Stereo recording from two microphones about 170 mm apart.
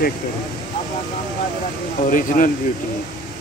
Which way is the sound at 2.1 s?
50° left (ahead or behind).